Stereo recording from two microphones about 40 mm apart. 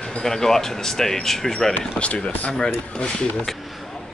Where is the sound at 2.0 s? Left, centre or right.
Left.